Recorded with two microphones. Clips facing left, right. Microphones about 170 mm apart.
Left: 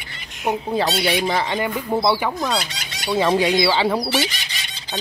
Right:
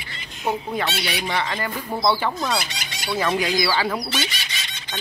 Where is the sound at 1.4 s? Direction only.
20° left (ahead or behind).